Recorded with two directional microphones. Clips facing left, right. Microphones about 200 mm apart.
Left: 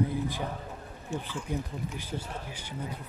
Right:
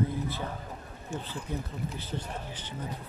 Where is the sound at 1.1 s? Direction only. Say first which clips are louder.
Left 2 dB; 45° right (ahead or behind).